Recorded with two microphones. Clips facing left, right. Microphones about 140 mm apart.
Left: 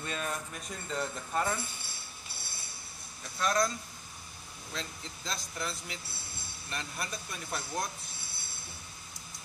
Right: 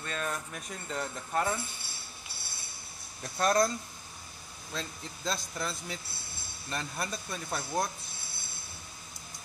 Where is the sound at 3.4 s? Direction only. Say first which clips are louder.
Right 3 dB; 40° right (ahead or behind).